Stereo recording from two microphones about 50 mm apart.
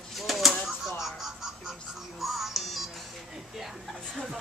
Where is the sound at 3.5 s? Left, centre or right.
Centre.